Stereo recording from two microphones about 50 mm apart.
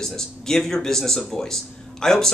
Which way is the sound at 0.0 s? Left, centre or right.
Centre.